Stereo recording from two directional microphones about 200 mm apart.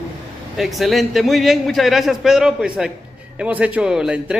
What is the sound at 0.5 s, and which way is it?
A man's voice, centre (ahead or behind).